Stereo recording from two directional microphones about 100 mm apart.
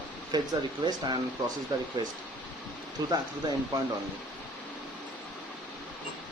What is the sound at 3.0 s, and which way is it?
Speech, 40° right (ahead or behind).